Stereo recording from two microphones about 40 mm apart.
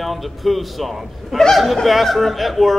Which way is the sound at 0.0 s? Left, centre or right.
Centre.